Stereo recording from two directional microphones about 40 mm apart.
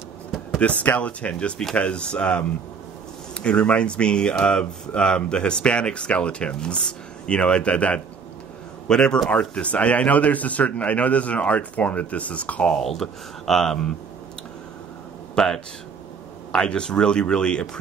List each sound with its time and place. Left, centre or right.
0.6 s a man's voice: left
8.8 s speech: centre
9.3 s a man's voice: left
12.7 s speech: centre
15.3 s speech: centre